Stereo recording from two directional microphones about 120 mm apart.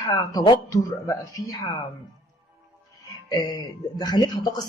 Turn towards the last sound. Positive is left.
turn(degrees=35)  # may be behind; listen again after turning